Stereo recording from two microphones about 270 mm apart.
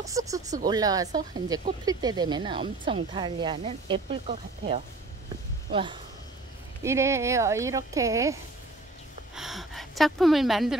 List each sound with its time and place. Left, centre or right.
0.0 s speech: centre
9.3 s speech: centre